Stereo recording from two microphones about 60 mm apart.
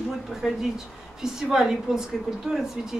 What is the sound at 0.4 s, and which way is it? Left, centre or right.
A woman's voice, centre.